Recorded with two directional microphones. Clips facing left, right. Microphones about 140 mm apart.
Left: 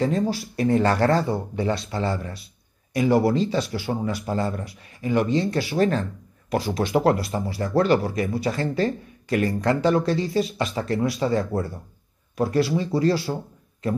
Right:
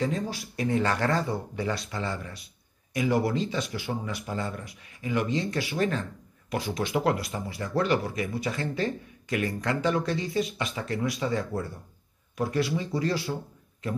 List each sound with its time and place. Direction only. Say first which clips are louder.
0.0 s speech: left 7 dB; 35° left (ahead or behind)